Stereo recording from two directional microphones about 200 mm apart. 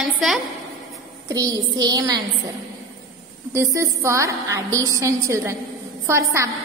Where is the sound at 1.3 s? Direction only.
20° right (ahead or behind).